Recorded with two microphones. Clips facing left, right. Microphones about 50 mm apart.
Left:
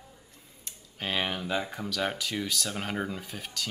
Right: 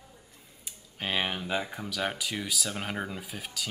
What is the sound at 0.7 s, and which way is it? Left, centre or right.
Speech, centre.